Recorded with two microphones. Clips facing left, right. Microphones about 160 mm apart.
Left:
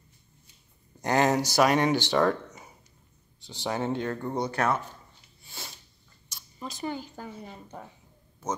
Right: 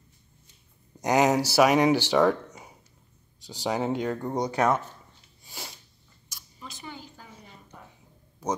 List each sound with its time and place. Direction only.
1.0 s speech: 10° right (ahead or behind)
5.4 s sneeze: 10° right (ahead or behind)
6.2 s speech: 35° left (ahead or behind)